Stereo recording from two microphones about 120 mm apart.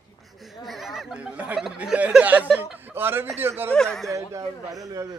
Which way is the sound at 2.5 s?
15° right (ahead or behind).